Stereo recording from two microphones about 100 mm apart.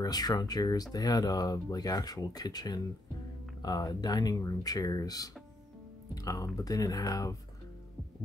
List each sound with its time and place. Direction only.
0.0 s speech: 40° left (ahead or behind)